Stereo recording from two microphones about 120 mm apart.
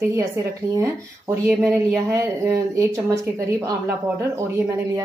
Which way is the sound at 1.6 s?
20° right (ahead or behind).